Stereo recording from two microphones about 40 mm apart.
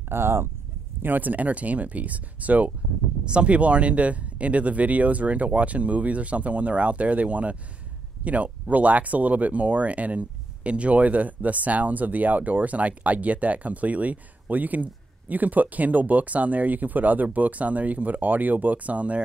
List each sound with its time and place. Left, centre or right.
0.1 s speech: right
1.0 s speech: right
3.3 s speech: right